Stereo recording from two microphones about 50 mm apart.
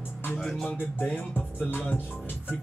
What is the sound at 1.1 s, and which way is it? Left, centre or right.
Music, left.